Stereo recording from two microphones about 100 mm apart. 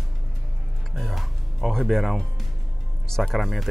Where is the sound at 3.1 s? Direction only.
5° left (ahead or behind).